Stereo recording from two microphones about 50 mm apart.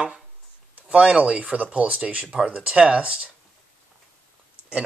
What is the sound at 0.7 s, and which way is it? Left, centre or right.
Speech, right.